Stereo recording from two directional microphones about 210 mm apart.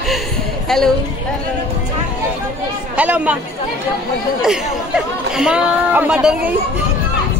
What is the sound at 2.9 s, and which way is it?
Speech, 5° right (ahead or behind).